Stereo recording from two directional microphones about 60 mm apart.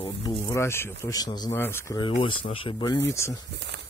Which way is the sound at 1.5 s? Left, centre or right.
Left.